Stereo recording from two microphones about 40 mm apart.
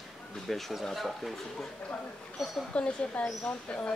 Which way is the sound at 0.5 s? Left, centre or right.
Centre.